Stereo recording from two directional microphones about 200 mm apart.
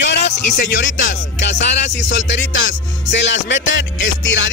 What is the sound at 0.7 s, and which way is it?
Music, 65° left (ahead or behind).